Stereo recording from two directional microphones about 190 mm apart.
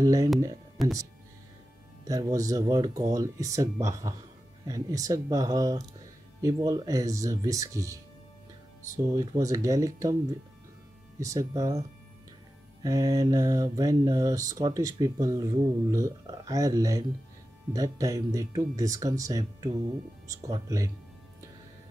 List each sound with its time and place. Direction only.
0.0 s speech: 15° right (ahead or behind)
0.8 s speech: centre (ahead or behind)
2.0 s speech: 20° right (ahead or behind)
11.1 s speech: 15° right (ahead or behind)
12.8 s speech: 20° right (ahead or behind)